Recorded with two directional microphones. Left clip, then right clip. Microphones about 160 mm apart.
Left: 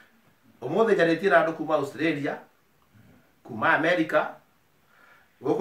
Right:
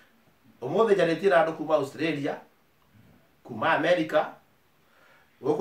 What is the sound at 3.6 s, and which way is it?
Speech, 15° right (ahead or behind).